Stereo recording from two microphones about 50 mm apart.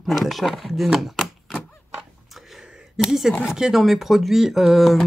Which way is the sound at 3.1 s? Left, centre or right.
Centre.